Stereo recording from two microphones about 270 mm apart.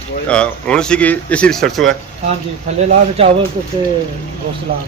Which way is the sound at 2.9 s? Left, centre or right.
Right.